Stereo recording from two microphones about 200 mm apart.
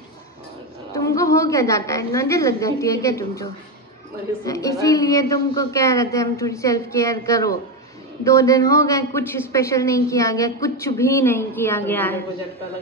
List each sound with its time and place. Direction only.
0.9 s a woman's voice: 15° left (ahead or behind)
4.5 s a woman's voice: 15° left (ahead or behind)